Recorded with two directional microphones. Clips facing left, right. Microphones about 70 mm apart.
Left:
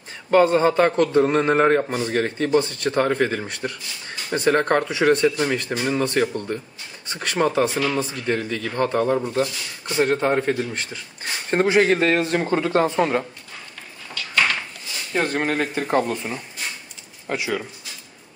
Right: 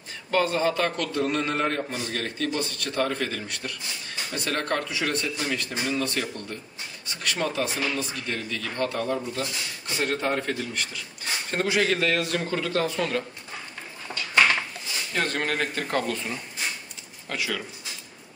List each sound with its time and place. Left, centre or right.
0.3 s speech: left
14.1 s a sound: right
15.1 s speech: centre
15.9 s speech: left